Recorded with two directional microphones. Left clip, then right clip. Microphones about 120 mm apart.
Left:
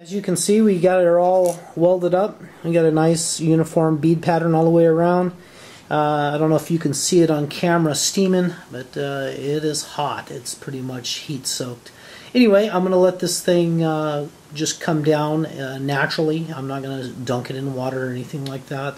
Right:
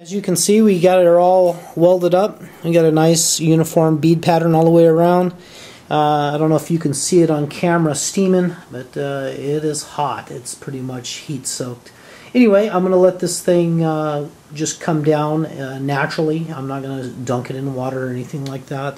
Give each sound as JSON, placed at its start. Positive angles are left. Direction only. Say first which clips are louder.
{"t": 0.2, "sound": "speech", "louder": "right 3 dB", "side_deg": -10}
{"t": 0.8, "sound": "speech", "louder": "right 4 dB", "side_deg": -25}
{"t": 2.0, "sound": "speech", "louder": "right 4 dB", "side_deg": -15}
{"t": 12.3, "sound": "speech", "louder": "right 2 dB", "side_deg": 5}